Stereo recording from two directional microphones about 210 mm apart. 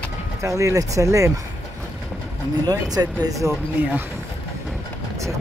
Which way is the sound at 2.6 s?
20° right (ahead or behind).